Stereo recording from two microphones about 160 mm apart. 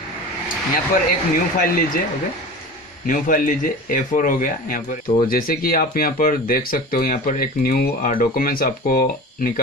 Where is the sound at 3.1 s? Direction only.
60° left (ahead or behind).